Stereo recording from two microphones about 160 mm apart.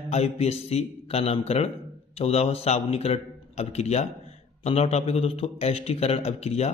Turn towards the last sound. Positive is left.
turn(degrees=40)  # may be behind; listen again after turning